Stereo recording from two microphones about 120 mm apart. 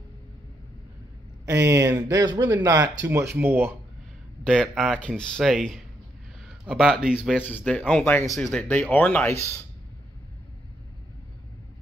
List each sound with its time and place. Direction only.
1.4 s speech: 25° right (ahead or behind)
3.1 s speech: 20° right (ahead or behind)
4.5 s speech: 5° left (ahead or behind)
7.3 s speech: 15° left (ahead or behind)
8.4 s speech: 5° left (ahead or behind)